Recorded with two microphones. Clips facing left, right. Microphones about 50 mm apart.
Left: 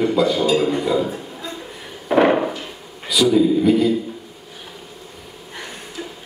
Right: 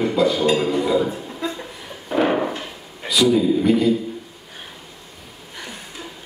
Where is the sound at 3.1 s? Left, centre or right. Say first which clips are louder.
Left 1 dB; centre.